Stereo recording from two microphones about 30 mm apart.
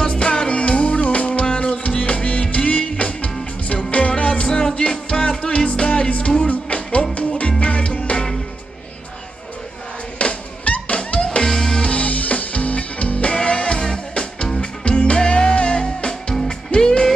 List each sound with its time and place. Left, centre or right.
0.0 s music: left
4.2 s music: left
10.2 s music: left
11.4 s music: centre
11.8 s music: left